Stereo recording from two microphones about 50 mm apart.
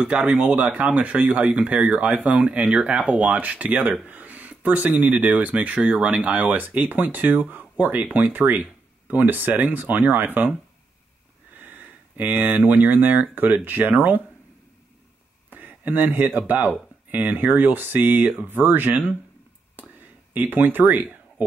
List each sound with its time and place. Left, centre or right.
0.0 s speech: right
11.5 s speech: right
15.5 s speech: right
20.3 s speech: right
21.4 s a sound: right